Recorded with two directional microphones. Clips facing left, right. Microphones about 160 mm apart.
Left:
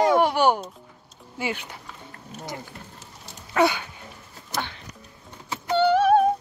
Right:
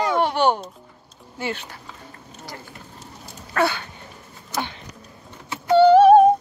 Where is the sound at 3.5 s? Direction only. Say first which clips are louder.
Left 1 dB; 15° left (ahead or behind).